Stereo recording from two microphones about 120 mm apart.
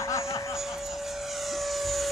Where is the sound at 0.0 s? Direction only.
25° left (ahead or behind).